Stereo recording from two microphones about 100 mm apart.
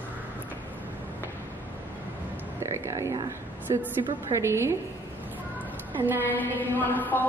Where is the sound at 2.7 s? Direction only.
30° right (ahead or behind).